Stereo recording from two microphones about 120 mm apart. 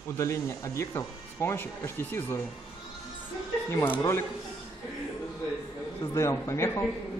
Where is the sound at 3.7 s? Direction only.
20° left (ahead or behind).